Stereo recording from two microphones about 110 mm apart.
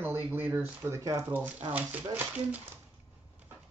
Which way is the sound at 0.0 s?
20° right (ahead or behind).